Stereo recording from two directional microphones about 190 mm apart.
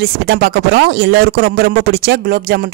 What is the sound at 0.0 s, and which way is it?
Speech, 55° right (ahead or behind).